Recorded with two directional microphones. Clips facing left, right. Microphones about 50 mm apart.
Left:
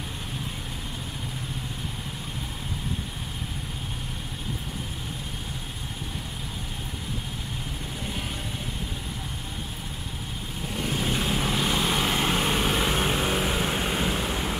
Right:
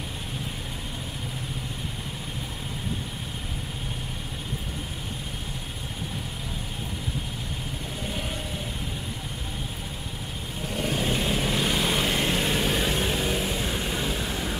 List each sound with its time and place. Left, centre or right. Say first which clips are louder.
10.7 s vehicle: right 1 dB; centre
13.5 s vehicle: left 2 dB; left